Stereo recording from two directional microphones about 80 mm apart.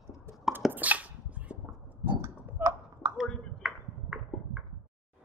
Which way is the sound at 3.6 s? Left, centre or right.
Centre.